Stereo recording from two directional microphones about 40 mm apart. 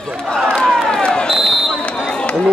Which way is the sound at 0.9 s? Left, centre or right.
Left.